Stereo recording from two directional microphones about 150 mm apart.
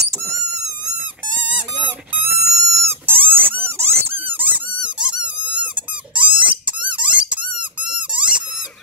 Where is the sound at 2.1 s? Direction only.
15° right (ahead or behind).